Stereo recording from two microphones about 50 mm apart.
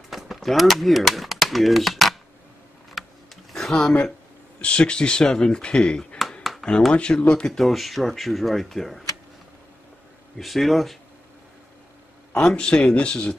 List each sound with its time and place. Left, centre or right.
0.1 s speech: centre
3.0 s a sound: centre
3.5 s a sound: centre
4.6 s speech: left
7.6 s speech: centre
10.3 s speech: centre
12.4 s speech: centre